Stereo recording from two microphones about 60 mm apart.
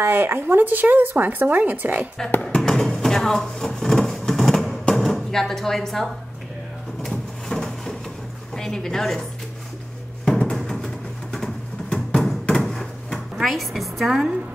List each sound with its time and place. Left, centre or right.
0.0 s speech: right
2.5 s music: centre
3.0 s a sound: centre
8.5 s a woman's voice: centre
10.2 s music: centre
11.9 s music: centre
12.6 s drawer open or close: centre